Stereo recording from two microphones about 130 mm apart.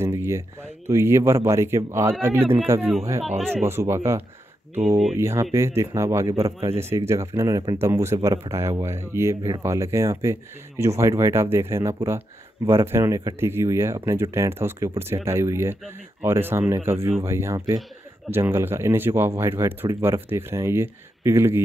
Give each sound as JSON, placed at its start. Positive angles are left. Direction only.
{"t": 0.0, "sound": "a sound", "side_deg": -20}
{"t": 0.8, "sound": "speech", "side_deg": -20}
{"t": 3.3, "sound": "speech", "side_deg": 5}
{"t": 3.6, "sound": "speech", "side_deg": -20}
{"t": 4.7, "sound": "speech", "side_deg": -55}
{"t": 5.1, "sound": "speech", "side_deg": -20}